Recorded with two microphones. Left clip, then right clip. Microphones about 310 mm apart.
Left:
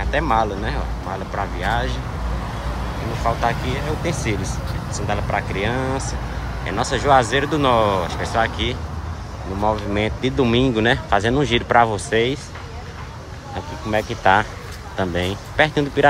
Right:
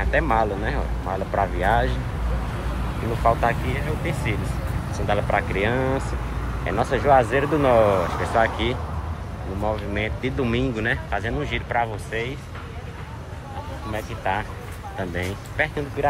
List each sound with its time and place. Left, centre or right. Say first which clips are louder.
0.0 s speech: left 2 dB; centre
3.3 s speech: even; centre
13.9 s speech: left 10 dB; centre